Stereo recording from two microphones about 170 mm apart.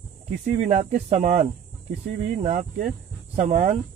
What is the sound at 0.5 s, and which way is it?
Speech, 40° right (ahead or behind).